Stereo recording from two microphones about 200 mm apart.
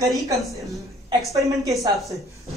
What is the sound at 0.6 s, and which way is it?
Speech, centre (ahead or behind).